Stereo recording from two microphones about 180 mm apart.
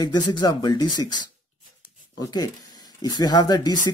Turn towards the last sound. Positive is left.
turn(degrees=20)  # may be behind; listen again after turning